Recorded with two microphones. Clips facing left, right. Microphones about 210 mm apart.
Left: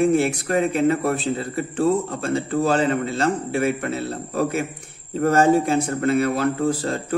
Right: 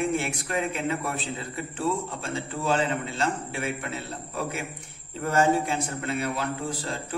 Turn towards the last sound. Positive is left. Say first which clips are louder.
# left 10 dB
turn(degrees=50)  # may be behind; listen again after turning